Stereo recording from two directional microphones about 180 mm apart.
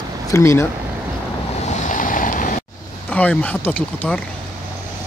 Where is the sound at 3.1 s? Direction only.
5° left (ahead or behind).